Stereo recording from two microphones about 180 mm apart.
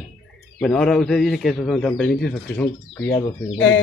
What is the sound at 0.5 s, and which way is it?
A man's voice, 5° left (ahead or behind).